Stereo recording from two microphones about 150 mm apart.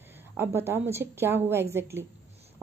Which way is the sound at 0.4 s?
15° right (ahead or behind).